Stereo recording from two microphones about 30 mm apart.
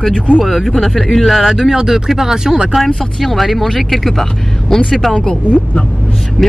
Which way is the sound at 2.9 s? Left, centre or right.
Centre.